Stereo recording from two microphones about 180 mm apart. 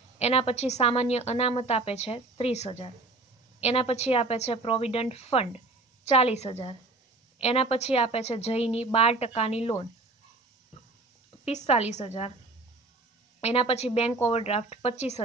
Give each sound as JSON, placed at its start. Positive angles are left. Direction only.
{"t": 0.2, "sound": "a woman's voice", "side_deg": 35}
{"t": 10.7, "sound": "a sound", "side_deg": 35}
{"t": 11.4, "sound": "a woman's voice", "side_deg": 35}
{"t": 13.4, "sound": "a woman's voice", "side_deg": 35}